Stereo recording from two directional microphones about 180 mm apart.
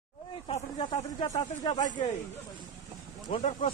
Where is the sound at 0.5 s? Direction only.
30° left (ahead or behind).